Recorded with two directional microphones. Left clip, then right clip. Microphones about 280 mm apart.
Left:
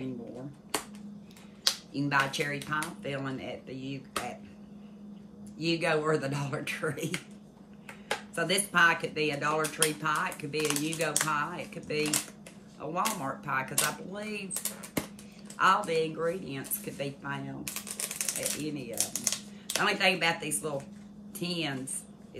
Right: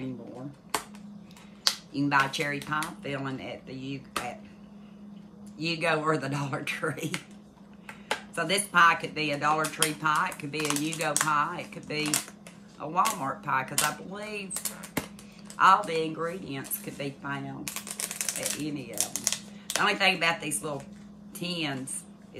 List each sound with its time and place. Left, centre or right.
1.6 s speech: centre
5.6 s speech: centre